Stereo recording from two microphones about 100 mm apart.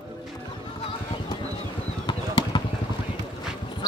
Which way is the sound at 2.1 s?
50° left (ahead or behind).